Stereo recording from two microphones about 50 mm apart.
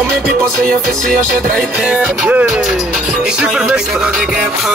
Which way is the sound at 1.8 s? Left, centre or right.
Right.